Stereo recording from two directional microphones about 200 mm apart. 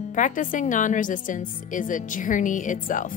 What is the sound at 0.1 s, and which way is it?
Speech, 40° left (ahead or behind).